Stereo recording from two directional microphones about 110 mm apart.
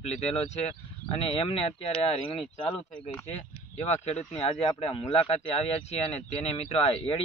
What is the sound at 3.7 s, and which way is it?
Speech, 85° left.